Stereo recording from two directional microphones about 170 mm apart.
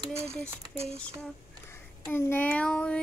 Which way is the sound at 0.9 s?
5° left (ahead or behind).